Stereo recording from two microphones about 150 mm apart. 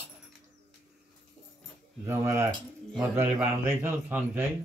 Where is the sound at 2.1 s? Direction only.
20° right (ahead or behind).